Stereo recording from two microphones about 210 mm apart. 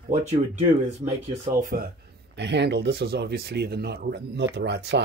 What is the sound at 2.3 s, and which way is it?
Speech, 55° right (ahead or behind).